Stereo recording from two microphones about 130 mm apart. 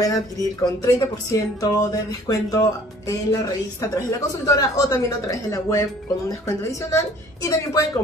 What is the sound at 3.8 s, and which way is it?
A woman's voice, 25° left (ahead or behind).